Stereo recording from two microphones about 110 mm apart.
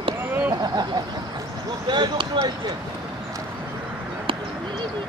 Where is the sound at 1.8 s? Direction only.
45° right (ahead or behind).